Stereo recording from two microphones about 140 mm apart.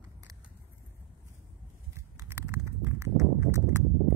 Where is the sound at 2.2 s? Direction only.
20° right (ahead or behind).